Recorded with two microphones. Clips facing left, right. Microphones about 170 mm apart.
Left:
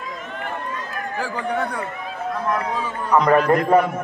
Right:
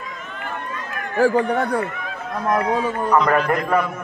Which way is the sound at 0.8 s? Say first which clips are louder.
Left 1 dB; 35° left (ahead or behind).